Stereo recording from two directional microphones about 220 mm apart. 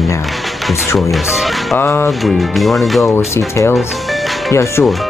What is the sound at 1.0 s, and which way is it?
Speech, centre (ahead or behind).